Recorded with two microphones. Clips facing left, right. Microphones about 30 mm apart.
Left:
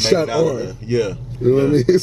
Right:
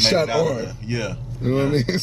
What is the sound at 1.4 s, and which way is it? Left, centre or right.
Speech, right.